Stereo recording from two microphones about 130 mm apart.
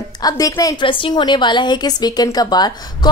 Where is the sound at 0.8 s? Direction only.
35° left (ahead or behind).